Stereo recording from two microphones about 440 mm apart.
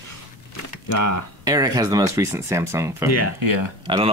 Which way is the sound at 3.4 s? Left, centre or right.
Right.